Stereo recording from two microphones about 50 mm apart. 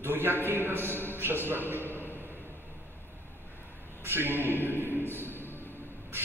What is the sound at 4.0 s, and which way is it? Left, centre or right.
Speech, right.